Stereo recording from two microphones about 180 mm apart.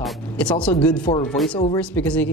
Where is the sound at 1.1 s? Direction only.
35° left (ahead or behind).